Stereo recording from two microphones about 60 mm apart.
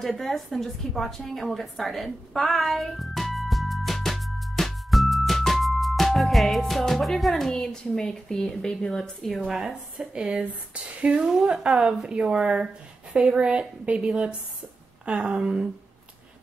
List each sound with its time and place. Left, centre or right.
0.0 s a woman's voice: centre
2.0 s music: centre
9.5 s speech: centre